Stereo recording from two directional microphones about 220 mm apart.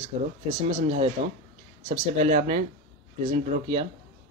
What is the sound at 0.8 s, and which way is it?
A man's voice, 30° right (ahead or behind).